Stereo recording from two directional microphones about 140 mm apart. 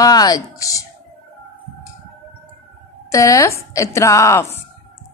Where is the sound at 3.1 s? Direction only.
25° left (ahead or behind).